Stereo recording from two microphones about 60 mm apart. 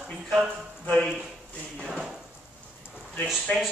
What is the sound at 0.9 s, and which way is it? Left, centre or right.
A man's voice, centre.